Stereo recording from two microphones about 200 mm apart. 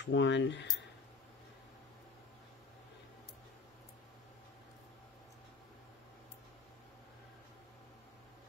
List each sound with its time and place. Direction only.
0.0 s speech: 65° left (ahead or behind)